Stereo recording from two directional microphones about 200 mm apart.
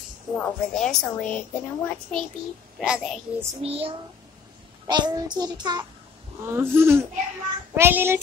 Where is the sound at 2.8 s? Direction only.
5° right (ahead or behind).